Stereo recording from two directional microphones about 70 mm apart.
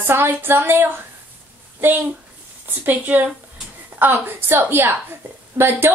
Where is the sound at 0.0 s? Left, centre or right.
Right.